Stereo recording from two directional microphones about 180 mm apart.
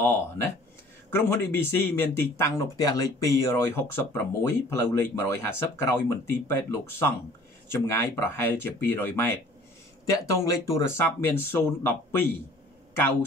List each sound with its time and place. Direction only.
0.0 s speech: 15° left (ahead or behind)